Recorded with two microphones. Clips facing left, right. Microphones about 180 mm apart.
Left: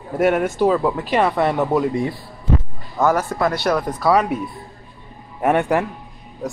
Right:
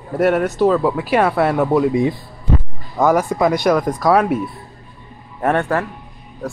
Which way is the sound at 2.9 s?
15° right (ahead or behind).